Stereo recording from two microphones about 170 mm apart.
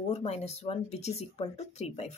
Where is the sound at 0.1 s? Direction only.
40° left (ahead or behind).